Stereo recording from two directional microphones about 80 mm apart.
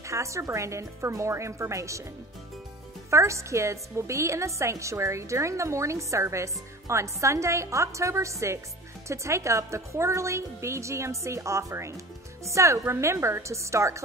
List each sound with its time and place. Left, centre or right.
0.0 s a woman's voice: right
3.1 s a woman's voice: right